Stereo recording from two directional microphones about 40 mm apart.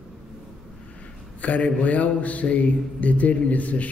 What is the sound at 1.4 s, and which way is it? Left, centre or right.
Speech, left.